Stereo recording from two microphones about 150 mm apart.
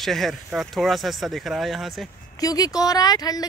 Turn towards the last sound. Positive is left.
turn(degrees=25)  # may be behind; listen again after turning